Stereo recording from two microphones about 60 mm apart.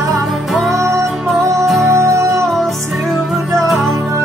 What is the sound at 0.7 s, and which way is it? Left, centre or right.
Music, right.